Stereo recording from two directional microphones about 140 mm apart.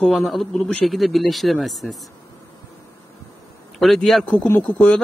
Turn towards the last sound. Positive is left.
turn(degrees=10)  # may be behind; listen again after turning